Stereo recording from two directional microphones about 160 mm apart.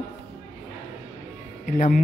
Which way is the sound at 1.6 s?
60° left (ahead or behind).